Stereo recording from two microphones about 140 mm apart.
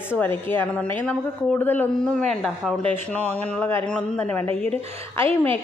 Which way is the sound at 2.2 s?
5° left (ahead or behind).